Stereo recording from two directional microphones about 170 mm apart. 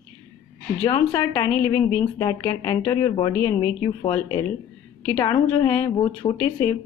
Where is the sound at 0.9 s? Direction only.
20° left (ahead or behind).